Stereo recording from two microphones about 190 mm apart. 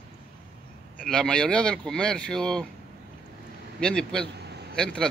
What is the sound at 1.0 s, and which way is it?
Speech, 5° left (ahead or behind).